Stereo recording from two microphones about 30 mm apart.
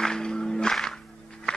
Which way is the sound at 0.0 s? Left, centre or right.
Left.